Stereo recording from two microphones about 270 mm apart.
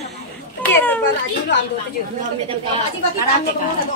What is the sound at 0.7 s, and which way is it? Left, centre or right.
Children playing, centre.